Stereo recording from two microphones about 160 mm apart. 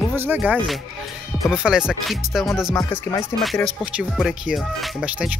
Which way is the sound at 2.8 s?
20° left (ahead or behind).